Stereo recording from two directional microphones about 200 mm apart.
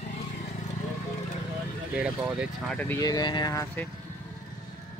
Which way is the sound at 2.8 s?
15° left (ahead or behind).